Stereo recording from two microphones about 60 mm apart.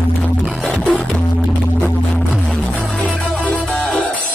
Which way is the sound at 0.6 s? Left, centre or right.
Left.